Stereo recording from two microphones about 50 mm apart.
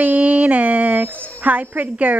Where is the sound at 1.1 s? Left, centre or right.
Left.